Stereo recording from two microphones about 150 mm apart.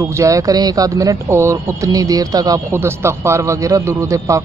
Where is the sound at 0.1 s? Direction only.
20° right (ahead or behind).